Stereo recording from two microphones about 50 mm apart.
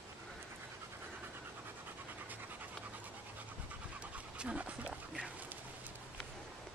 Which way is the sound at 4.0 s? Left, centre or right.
Right.